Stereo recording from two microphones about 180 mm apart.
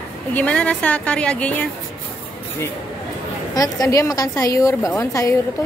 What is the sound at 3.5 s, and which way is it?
A woman's voice, 20° left (ahead or behind).